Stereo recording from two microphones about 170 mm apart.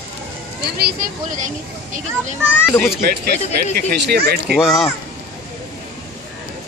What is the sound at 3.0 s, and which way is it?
Speech, 65° right (ahead or behind).